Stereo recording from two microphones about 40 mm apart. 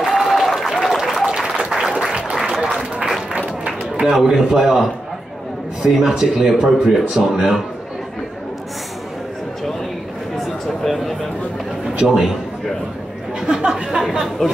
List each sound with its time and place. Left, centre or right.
0.0 s applause: centre
1.2 s applause: centre
4.0 s a man's voice: centre
5.9 s a man's voice: centre
10.4 s a sound: centre
13.4 s chatter: centre
13.8 s speech: centre
14.4 s speech: centre